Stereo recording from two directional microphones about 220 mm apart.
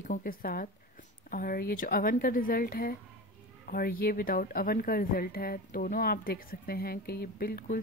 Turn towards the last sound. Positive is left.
turn(degrees=40)  # may be behind; listen again after turning